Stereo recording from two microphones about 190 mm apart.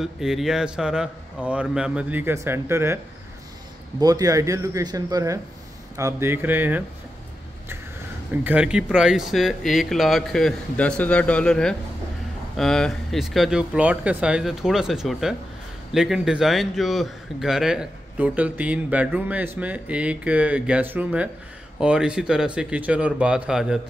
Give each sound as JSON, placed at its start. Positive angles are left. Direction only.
{"t": 0.0, "sound": "speech", "side_deg": 0}
{"t": 4.0, "sound": "a man's voice", "side_deg": -20}
{"t": 8.5, "sound": "a man's voice", "side_deg": -5}